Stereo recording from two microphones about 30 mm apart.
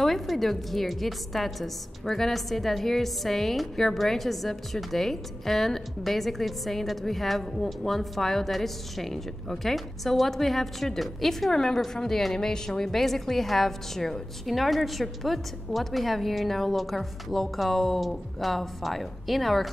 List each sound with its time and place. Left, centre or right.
0.0 s a woman's voice: centre
12.9 s a woman's voice: centre